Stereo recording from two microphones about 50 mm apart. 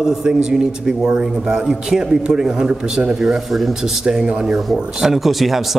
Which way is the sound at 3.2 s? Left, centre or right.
Centre.